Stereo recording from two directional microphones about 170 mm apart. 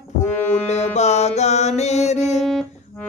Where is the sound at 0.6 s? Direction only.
40° left (ahead or behind).